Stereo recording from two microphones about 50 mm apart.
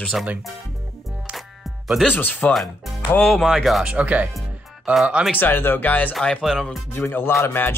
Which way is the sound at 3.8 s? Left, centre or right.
Right.